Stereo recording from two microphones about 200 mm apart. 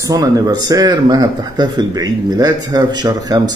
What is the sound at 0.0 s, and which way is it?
Speech, 20° right (ahead or behind).